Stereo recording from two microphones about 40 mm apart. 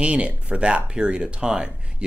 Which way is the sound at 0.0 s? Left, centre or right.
Right.